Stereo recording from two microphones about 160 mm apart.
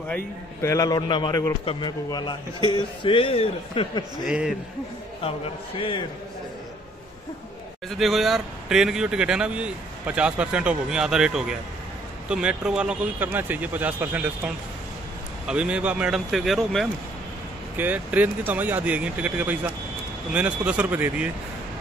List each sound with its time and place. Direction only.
0.1 s a man's voice: 15° left (ahead or behind); by 4.0 s 35° left (ahead or behind)
4.2 s speech: 5° right (ahead or behind)
5.8 s speech: 35° left (ahead or behind)
8.0 s speech: centre (ahead or behind)
17.7 s speech: 10° right (ahead or behind)